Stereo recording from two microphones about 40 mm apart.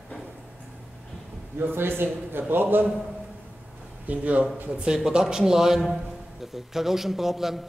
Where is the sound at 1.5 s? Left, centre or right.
Right.